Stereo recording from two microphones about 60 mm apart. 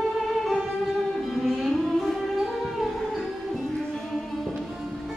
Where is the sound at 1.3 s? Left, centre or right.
Centre.